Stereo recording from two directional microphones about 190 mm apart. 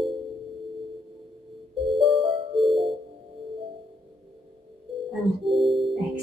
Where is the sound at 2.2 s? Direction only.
25° right (ahead or behind).